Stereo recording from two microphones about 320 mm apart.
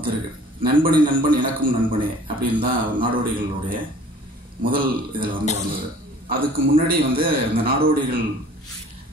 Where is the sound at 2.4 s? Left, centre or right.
Right.